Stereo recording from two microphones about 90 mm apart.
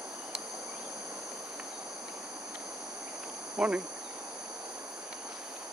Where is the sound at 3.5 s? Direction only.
15° right (ahead or behind).